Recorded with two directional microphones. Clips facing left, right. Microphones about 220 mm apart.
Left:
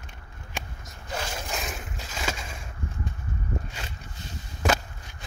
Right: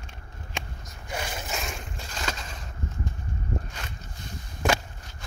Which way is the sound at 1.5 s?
Centre (ahead or behind).